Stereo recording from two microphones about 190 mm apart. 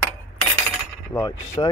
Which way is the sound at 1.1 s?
15° left (ahead or behind).